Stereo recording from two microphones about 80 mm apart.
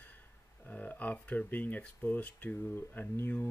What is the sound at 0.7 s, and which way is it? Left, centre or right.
Speech, centre.